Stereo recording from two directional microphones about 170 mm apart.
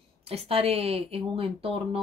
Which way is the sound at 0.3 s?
35° right (ahead or behind).